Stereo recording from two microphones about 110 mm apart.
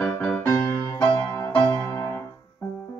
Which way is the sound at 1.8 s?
25° left (ahead or behind).